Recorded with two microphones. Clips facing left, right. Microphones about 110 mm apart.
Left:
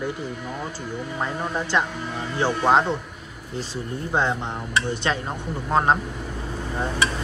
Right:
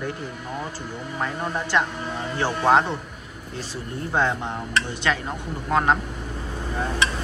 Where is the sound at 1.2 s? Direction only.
20° left (ahead or behind).